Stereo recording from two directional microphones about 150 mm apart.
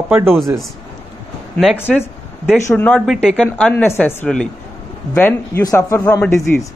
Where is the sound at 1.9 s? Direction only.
5° left (ahead or behind).